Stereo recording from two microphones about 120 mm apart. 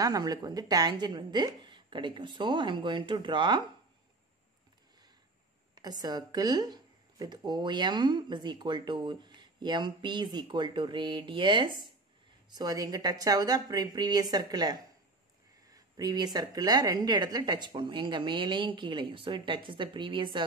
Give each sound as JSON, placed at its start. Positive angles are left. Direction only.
{"t": 0.0, "sound": "speech", "side_deg": -35}
{"t": 5.8, "sound": "speech", "side_deg": -35}